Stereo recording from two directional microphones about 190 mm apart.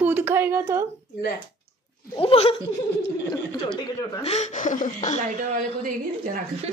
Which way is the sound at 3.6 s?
25° left (ahead or behind).